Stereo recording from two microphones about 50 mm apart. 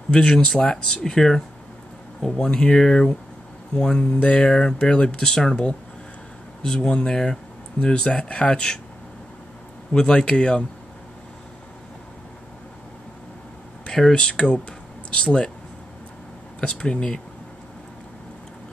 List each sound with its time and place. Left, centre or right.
0.1 s speech: centre
9.9 s speech: centre
14.1 s speech: centre
16.5 s speech: centre